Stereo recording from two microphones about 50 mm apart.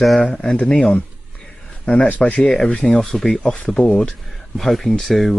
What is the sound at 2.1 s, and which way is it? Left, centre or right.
Speech, left.